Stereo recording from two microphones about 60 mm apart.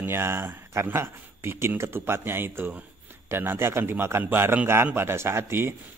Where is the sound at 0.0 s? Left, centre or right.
Right.